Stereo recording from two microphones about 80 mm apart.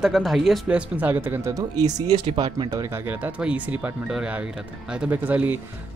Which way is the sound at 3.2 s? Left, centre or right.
Centre.